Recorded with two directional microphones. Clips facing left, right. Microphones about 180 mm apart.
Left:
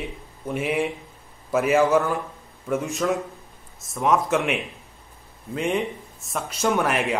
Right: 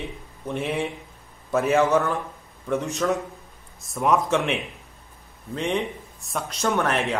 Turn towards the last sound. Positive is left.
turn(degrees=5)  # may be behind; listen again after turning